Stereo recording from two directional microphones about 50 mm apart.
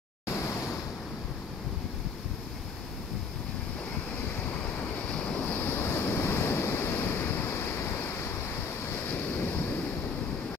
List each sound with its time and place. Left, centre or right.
5.1 s waves: left
5.5 s waves: left